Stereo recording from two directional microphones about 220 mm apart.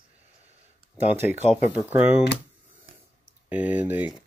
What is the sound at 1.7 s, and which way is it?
Speech, 5° right (ahead or behind).